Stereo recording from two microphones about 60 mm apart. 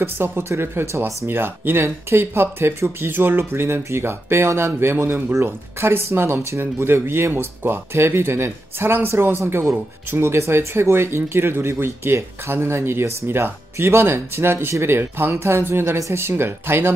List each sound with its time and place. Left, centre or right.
0.0 s speech: right
9.4 s speech: right